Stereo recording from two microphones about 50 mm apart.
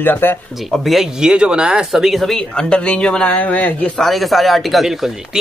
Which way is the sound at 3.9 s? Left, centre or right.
Centre.